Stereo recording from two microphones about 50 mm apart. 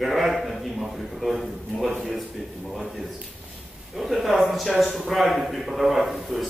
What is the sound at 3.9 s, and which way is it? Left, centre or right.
A man's voice, centre.